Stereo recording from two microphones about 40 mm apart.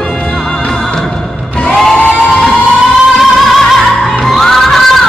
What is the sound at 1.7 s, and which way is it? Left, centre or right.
Music, centre.